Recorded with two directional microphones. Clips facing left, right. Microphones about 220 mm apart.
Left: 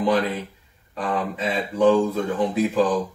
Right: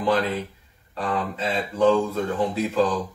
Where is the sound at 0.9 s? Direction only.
15° left (ahead or behind).